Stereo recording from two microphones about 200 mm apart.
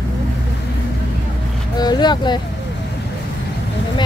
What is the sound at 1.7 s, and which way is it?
Speech, 20° left (ahead or behind).